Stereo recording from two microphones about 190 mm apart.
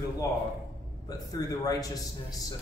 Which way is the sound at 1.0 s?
20° left (ahead or behind).